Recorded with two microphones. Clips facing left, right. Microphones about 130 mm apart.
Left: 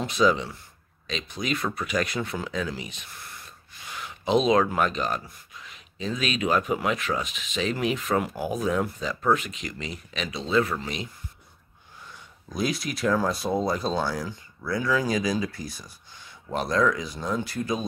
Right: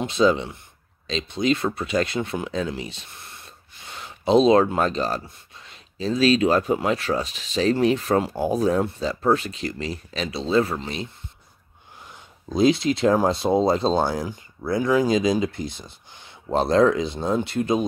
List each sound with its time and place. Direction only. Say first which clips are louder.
0.0 s speech: right 3 dB; 30° right (ahead or behind)
12.1 s speech: right 9 dB; 25° right (ahead or behind)